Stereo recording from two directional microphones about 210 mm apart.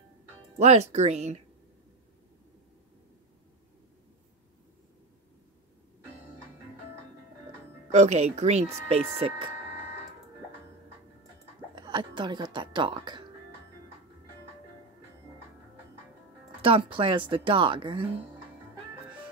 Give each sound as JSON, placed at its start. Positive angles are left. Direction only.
{"t": 0.6, "sound": "speech", "side_deg": -30}
{"t": 7.9, "sound": "speech", "side_deg": -30}
{"t": 11.7, "sound": "speech", "side_deg": -20}
{"t": 16.6, "sound": "speech", "side_deg": -25}